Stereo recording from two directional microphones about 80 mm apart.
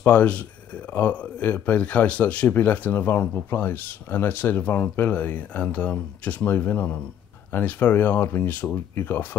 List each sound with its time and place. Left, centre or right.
0.0 s speech: centre